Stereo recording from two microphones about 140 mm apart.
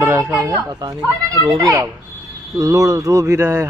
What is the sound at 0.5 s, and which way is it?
Speech, 25° right (ahead or behind).